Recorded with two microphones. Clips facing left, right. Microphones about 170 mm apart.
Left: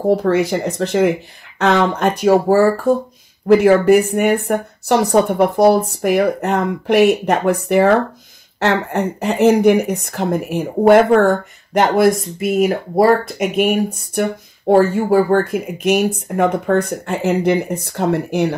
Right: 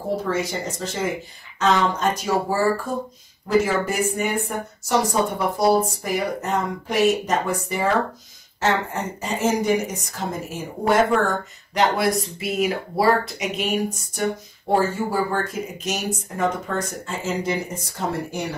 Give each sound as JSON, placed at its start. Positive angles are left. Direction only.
{"t": 0.2, "sound": "speech", "side_deg": 60}
{"t": 14.7, "sound": "speech", "side_deg": 60}